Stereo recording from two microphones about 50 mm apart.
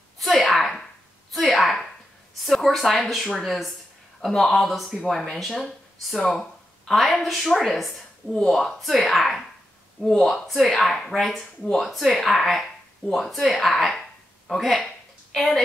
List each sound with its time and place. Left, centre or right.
0.2 s sneeze: centre
1.3 s a sound: centre
2.4 s a woman's voice: centre